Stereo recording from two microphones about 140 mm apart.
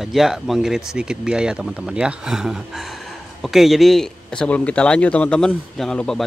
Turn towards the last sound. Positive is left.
turn(degrees=5)  # may be behind; listen again after turning